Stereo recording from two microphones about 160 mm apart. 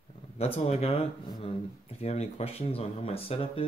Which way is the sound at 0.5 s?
40° left (ahead or behind).